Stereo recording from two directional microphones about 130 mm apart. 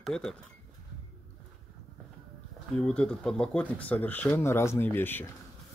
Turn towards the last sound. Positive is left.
turn(degrees=15)  # may be behind; listen again after turning